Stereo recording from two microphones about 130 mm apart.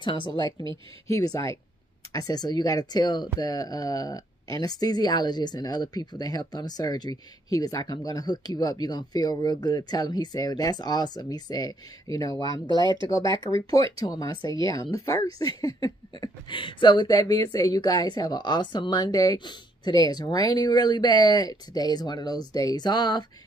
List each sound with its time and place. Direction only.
0.0 s speech: 40° left (ahead or behind)
1.1 s speech: 25° left (ahead or behind)
12.8 s speech: 40° right (ahead or behind)
14.0 s speech: 30° left (ahead or behind)